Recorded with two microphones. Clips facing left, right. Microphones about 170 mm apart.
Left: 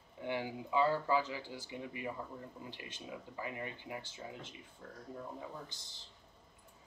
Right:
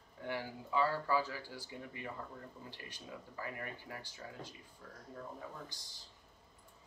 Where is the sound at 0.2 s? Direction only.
20° left (ahead or behind).